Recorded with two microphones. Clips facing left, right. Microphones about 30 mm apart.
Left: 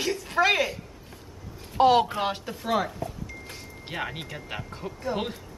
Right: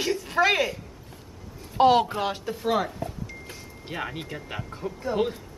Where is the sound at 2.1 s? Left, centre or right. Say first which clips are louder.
Right 1 dB; centre.